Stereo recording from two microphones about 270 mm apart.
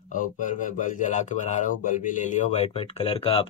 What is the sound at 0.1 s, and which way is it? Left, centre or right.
Speech, left.